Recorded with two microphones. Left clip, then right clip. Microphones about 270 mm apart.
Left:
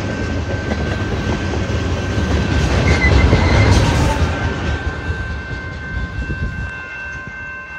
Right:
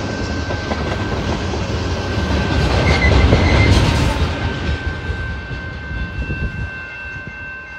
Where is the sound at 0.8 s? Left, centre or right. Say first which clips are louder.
Even; right.